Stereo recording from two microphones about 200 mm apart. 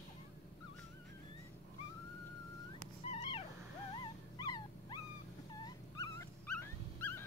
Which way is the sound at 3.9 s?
20° left (ahead or behind).